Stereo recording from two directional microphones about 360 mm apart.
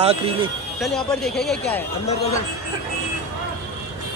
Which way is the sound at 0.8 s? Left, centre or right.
Centre.